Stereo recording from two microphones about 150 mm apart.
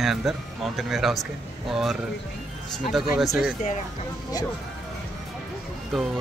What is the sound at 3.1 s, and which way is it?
Speech, centre (ahead or behind).